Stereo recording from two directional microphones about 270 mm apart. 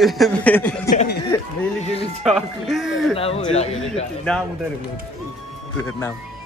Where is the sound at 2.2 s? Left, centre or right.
Centre.